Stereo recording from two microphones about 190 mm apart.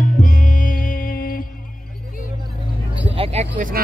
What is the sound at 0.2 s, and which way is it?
Music, 45° left (ahead or behind).